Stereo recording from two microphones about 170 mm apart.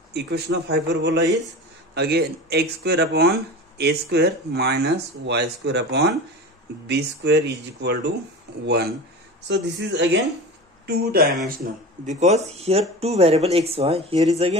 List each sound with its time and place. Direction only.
0.1 s a man's voice: 75° right (ahead or behind)
2.0 s a man's voice: 70° right (ahead or behind)
9.5 s speech: 90° right
10.9 s speech: 65° right (ahead or behind)
11.4 s speech: 55° right (ahead or behind); by 14.6 s 35° right (ahead or behind)